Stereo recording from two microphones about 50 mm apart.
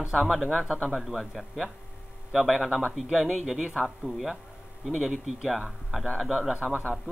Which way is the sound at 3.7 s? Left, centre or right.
Centre.